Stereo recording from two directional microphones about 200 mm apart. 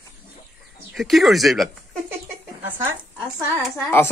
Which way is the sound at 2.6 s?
10° right (ahead or behind).